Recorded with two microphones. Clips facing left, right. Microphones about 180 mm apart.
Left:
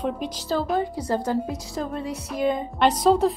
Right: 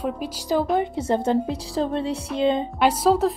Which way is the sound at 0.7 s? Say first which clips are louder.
Right 2 dB; 25° right (ahead or behind).